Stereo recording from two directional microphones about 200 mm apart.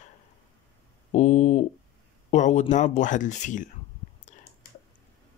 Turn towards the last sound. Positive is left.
turn(degrees=40)  # may be behind; listen again after turning